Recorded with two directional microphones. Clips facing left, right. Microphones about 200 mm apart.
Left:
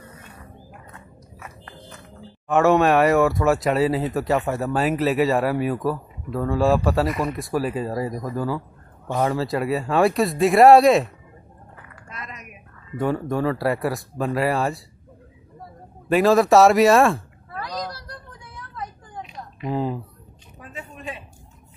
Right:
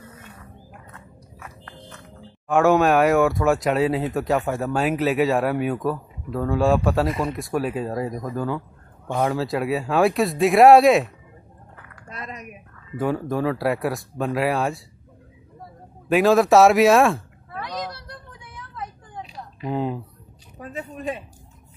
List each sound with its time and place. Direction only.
0.9 s biting: 10° left (ahead or behind)
2.4 s speech: centre (ahead or behind)
7.1 s speech: 30° right (ahead or behind)
7.3 s speech: centre (ahead or behind)
12.1 s a sound: 35° right (ahead or behind)
12.9 s speech: centre (ahead or behind)
16.1 s cat: centre (ahead or behind)
19.6 s speech: centre (ahead or behind)
20.5 s a sound: 40° right (ahead or behind)